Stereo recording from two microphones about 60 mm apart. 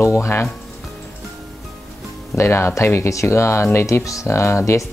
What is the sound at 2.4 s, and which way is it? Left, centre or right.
Speech, left.